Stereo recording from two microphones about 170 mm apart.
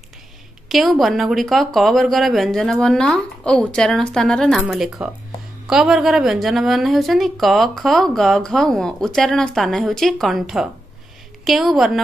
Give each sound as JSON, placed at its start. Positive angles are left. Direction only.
{"t": 0.7, "sound": "a woman's voice", "side_deg": 0}